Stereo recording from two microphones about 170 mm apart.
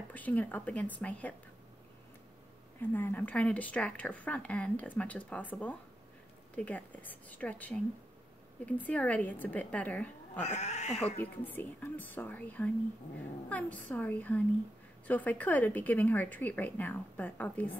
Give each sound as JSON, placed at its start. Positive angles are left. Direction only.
{"t": 0.1, "sound": "a woman's voice", "side_deg": 10}
{"t": 2.8, "sound": "a woman's voice", "side_deg": 10}
{"t": 10.4, "sound": "speech", "side_deg": 40}
{"t": 11.1, "sound": "a woman's voice", "side_deg": 10}